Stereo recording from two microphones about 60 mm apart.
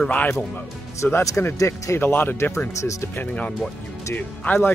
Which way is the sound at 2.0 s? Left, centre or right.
Left.